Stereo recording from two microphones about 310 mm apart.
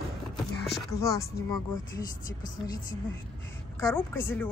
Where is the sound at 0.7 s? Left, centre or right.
Centre.